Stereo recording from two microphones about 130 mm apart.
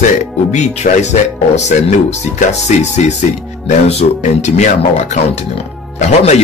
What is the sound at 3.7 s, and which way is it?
Speech, 65° left (ahead or behind).